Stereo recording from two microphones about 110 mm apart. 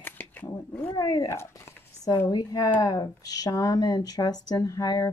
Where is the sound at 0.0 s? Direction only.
15° left (ahead or behind).